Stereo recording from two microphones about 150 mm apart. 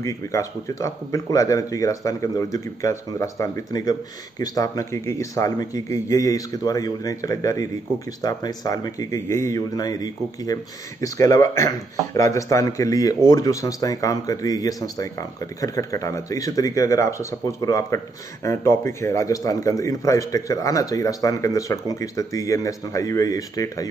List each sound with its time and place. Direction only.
0.0 s a man's voice: 20° left (ahead or behind)